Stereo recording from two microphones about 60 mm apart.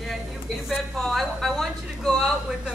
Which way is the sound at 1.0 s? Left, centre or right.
Centre.